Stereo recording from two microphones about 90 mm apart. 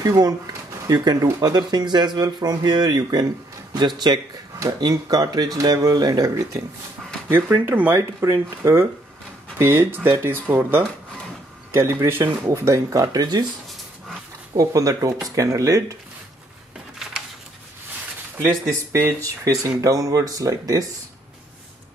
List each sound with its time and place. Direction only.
0.0 s speech: 40° right (ahead or behind)
7.2 s speech: 25° right (ahead or behind)
8.0 s speech: 35° right (ahead or behind)
14.5 s speech: 40° right (ahead or behind)
18.9 s speech: 30° right (ahead or behind)